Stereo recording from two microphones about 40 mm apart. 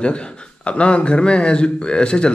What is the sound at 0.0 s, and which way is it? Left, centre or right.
Speech, left.